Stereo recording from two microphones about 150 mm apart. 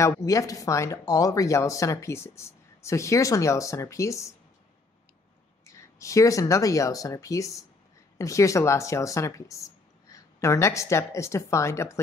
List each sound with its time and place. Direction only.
0.0 s speech: 20° left (ahead or behind)
5.9 s speech: 20° left (ahead or behind)